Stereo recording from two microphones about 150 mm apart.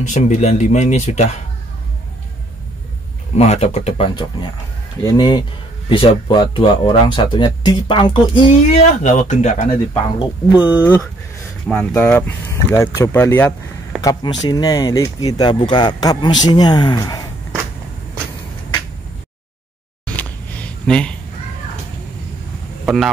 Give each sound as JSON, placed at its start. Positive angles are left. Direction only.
{"t": 0.0, "sound": "speech", "side_deg": 55}
{"t": 3.3, "sound": "speech", "side_deg": 45}
{"t": 4.1, "sound": "speech", "side_deg": 30}
{"t": 8.6, "sound": "speech", "side_deg": 50}
{"t": 11.6, "sound": "speech", "side_deg": 5}
{"t": 14.0, "sound": "speech", "side_deg": 25}
{"t": 20.2, "sound": "a sound", "side_deg": 10}